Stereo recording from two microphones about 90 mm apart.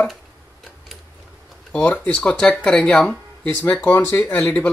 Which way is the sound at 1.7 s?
15° left (ahead or behind).